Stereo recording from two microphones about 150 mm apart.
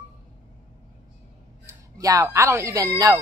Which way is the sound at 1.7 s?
25° right (ahead or behind).